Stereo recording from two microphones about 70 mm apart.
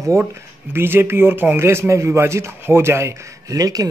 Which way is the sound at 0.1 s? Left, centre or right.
Right.